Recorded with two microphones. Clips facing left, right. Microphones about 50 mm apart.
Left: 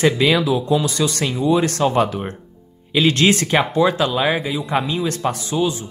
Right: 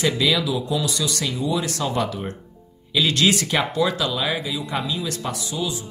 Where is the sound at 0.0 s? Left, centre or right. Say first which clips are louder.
Left 5 dB; left.